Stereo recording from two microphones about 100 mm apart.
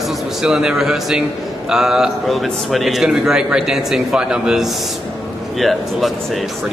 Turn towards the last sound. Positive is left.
turn(degrees=0)  # may be behind; listen again after turning